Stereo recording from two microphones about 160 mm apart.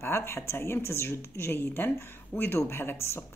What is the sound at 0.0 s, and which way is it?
Speech, 15° left (ahead or behind).